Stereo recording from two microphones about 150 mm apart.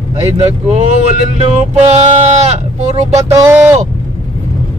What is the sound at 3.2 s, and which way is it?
Speech, 20° right (ahead or behind).